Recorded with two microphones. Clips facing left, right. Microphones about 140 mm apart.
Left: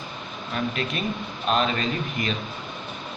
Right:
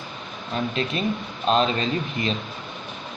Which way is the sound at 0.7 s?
30° right (ahead or behind).